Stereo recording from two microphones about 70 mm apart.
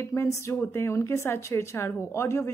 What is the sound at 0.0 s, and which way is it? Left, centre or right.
Speech, left.